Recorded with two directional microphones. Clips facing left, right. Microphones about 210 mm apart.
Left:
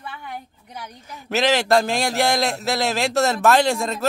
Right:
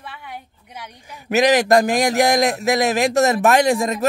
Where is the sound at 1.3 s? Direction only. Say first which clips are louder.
Right 4 dB; 15° right (ahead or behind).